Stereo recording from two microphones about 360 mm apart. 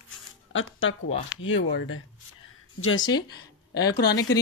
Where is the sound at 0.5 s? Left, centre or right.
Left.